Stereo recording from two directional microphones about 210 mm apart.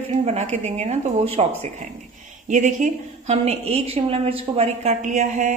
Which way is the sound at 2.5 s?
35° right (ahead or behind).